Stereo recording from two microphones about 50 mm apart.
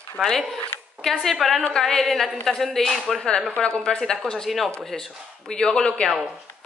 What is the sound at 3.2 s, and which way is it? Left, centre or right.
A woman's voice, centre.